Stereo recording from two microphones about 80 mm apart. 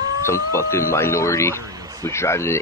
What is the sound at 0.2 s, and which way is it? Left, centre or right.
Speech, left.